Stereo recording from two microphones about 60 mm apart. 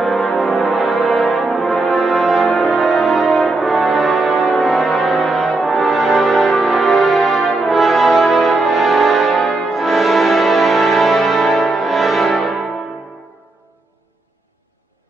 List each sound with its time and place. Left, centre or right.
0.0 s music: centre
0.3 s brass instrument: centre
5.6 s music: centre
7.7 s brass instrument: centre